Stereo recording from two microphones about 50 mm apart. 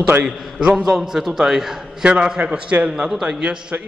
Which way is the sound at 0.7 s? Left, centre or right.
Centre.